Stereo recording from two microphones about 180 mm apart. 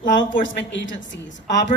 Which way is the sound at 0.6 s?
90° left.